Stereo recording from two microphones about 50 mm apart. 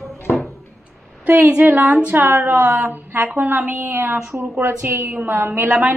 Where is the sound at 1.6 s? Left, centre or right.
Right.